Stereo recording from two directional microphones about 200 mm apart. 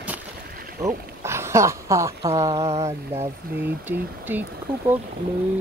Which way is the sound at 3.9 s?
10° right (ahead or behind).